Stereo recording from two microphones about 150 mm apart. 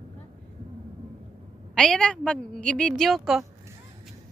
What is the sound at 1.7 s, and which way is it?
A woman's voice, 5° left (ahead or behind).